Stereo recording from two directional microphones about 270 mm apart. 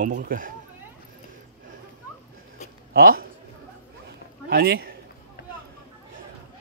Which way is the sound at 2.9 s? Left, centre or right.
Right.